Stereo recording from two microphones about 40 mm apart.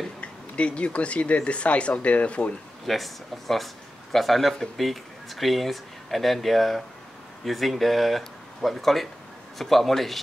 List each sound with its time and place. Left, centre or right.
0.2 s speech: left
2.9 s speech: centre